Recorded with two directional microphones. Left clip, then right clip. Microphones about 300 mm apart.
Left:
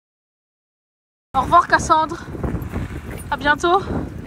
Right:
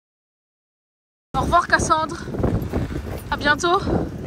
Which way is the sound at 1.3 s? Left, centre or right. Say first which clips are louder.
Left 3 dB; centre.